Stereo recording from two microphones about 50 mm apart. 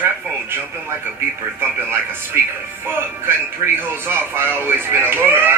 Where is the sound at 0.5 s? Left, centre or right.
Right.